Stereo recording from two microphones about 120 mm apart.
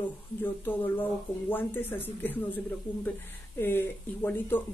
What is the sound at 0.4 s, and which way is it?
Speech, 15° left (ahead or behind).